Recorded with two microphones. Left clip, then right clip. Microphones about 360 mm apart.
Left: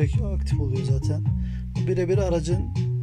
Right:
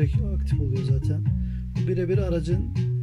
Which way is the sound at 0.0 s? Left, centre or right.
Centre.